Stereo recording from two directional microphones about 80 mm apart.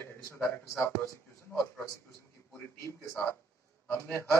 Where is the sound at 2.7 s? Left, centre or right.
Left.